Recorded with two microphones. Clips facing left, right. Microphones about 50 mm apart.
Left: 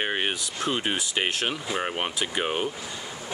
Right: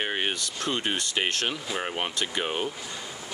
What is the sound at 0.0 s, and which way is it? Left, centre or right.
Speech, centre.